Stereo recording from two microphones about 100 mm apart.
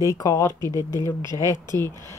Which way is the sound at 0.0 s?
35° left (ahead or behind).